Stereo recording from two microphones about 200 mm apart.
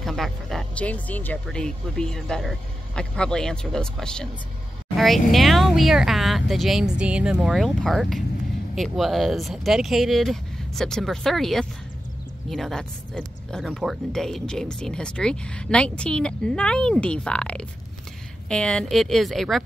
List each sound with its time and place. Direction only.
0.0 s speech: centre (ahead or behind)